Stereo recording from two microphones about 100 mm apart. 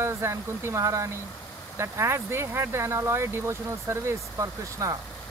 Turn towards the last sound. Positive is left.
turn(degrees=-35)  # may be behind; listen again after turning